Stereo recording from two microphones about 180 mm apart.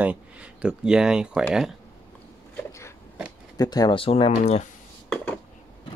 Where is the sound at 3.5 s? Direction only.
20° left (ahead or behind).